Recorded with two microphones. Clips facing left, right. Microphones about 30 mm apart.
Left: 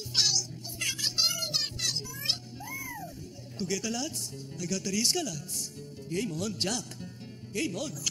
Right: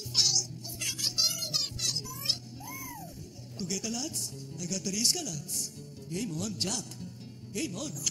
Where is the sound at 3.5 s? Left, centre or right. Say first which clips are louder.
Left 3 dB; left.